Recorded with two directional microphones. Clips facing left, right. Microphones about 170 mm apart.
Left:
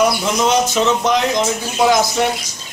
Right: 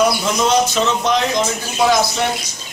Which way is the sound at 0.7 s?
15° left (ahead or behind).